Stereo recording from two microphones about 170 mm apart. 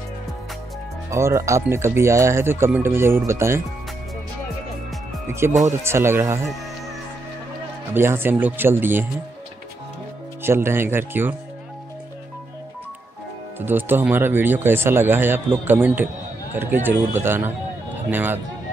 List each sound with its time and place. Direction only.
1.1 s speech: 15° right (ahead or behind)
5.7 s speech: 15° right (ahead or behind)
7.9 s speech: 15° right (ahead or behind)
10.4 s speech: 15° right (ahead or behind)
13.6 s speech: 10° right (ahead or behind)